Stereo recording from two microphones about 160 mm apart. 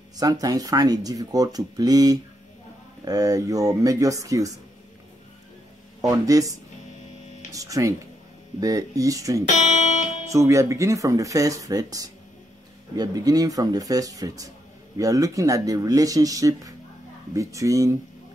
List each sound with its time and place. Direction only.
0.2 s speech: 25° right (ahead or behind)
5.9 s speech: 20° right (ahead or behind)
7.5 s speech: 20° right (ahead or behind)
9.5 s guitar: 45° left (ahead or behind)
10.3 s speech: 20° right (ahead or behind)